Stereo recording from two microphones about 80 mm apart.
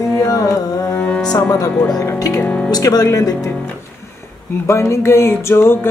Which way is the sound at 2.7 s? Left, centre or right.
Left.